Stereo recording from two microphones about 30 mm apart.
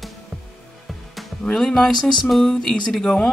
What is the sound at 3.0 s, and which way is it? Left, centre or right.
Speech, left.